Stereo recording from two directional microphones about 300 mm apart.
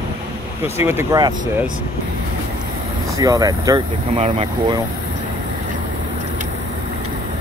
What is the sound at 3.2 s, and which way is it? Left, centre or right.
Speech, centre.